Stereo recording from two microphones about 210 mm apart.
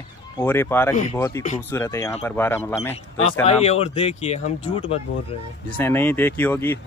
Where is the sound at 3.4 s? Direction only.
30° left (ahead or behind).